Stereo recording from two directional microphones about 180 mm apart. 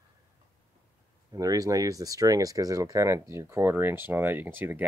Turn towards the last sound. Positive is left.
turn(degrees=-10)  # may be behind; listen again after turning